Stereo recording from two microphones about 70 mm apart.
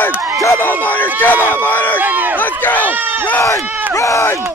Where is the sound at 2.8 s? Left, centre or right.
Right.